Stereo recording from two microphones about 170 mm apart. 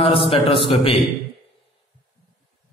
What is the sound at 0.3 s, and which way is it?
Speech, 35° left (ahead or behind).